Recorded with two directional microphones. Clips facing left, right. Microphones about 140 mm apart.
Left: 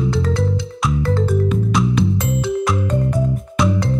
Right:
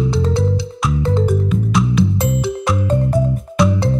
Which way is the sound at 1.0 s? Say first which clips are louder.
Right 3 dB; 20° right (ahead or behind).